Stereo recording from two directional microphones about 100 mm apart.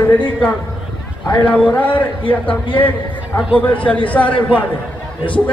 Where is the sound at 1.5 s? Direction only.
15° left (ahead or behind).